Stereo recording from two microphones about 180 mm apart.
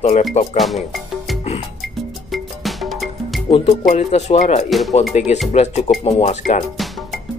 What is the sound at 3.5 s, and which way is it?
Speech, 35° left (ahead or behind).